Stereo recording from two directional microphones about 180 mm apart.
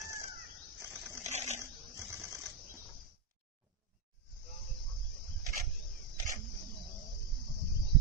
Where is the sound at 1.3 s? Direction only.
40° right (ahead or behind).